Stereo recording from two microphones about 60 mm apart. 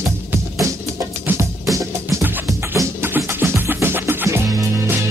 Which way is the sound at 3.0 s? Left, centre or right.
Right.